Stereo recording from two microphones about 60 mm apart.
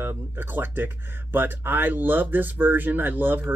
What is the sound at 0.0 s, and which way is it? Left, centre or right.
Speech, right.